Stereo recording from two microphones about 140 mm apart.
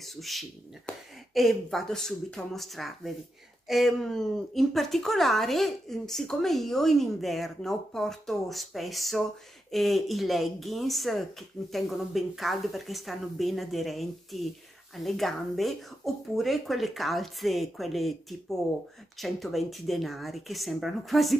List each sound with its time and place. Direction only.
0.0 s speech: centre (ahead or behind)
19.1 s speech: centre (ahead or behind)